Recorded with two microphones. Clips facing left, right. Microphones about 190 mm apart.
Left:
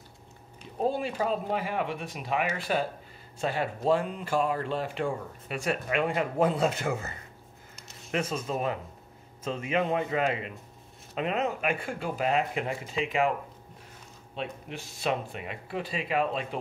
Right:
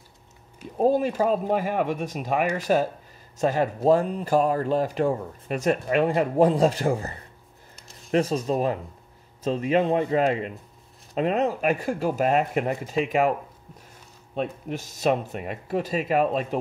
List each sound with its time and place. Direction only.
0.7 s speech: 40° right (ahead or behind)
14.3 s speech: 45° right (ahead or behind)